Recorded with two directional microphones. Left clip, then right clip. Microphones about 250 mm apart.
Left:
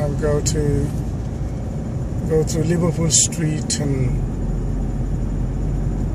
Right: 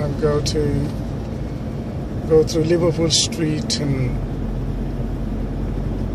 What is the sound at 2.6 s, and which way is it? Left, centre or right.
Speech, centre.